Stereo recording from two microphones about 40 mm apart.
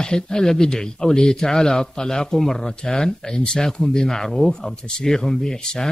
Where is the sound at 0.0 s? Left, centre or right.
Centre.